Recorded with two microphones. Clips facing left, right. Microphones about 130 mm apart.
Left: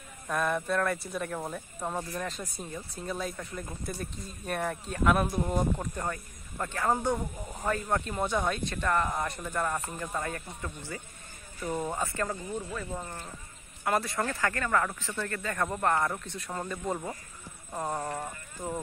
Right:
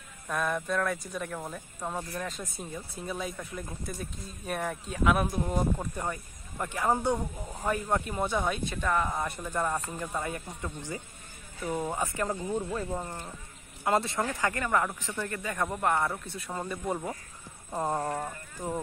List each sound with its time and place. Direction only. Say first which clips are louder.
0.3 s speech: left 1 dB; centre (ahead or behind)